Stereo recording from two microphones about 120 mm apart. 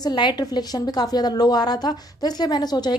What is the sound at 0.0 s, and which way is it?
A woman's voice, 40° left (ahead or behind).